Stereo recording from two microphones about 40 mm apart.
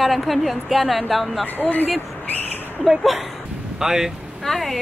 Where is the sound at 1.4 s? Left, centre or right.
Left.